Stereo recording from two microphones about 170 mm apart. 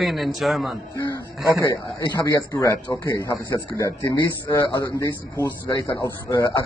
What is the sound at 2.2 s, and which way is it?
Speech, 15° left (ahead or behind).